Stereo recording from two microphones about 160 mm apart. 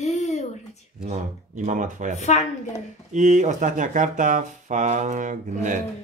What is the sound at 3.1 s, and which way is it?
Speech, 50° right (ahead or behind).